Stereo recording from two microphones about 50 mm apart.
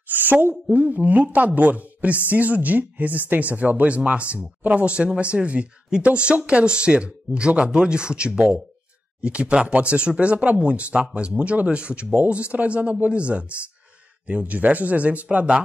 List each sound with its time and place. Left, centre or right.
0.1 s speech: right